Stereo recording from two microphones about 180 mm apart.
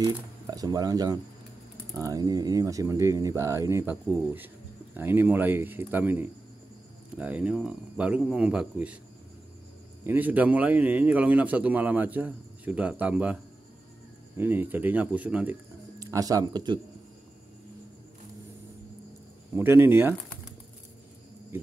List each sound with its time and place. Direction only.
0.0 s a man's voice: 20° right (ahead or behind)
10.0 s a man's voice: 10° right (ahead or behind)
16.0 s speech: 20° right (ahead or behind)
19.5 s a man's voice: 10° right (ahead or behind)